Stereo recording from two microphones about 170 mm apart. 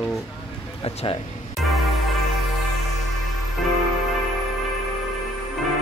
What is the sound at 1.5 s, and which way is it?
Music, centre (ahead or behind).